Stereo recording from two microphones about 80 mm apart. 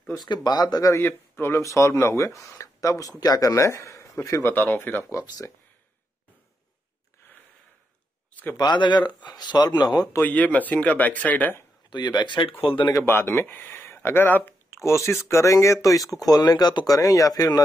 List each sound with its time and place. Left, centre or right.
0.1 s speech: left
0.9 s speech: left
4.5 s speech: left
8.5 s speech: left
10.2 s speech: centre
11.9 s speech: left
12.9 s speech: left
14.7 s speech: left
16.1 s speech: left